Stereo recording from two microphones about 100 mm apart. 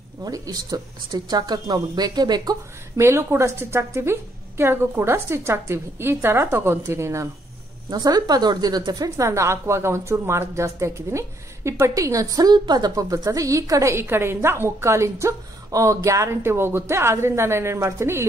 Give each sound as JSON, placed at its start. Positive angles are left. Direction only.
{"t": 0.2, "sound": "speech", "side_deg": -40}
{"t": 3.0, "sound": "a woman's voice", "side_deg": -25}
{"t": 7.9, "sound": "speech", "side_deg": -40}
{"t": 9.1, "sound": "a woman's voice", "side_deg": -30}